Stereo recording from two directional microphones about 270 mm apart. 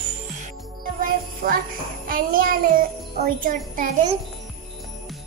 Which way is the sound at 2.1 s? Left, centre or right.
Right.